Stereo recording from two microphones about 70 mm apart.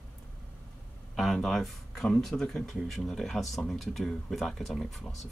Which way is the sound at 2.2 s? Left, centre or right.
Centre.